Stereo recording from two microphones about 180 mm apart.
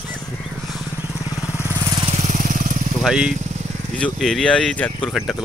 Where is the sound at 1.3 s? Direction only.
20° left (ahead or behind).